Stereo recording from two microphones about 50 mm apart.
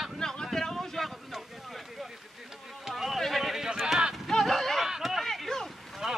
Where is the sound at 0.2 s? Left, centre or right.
Centre.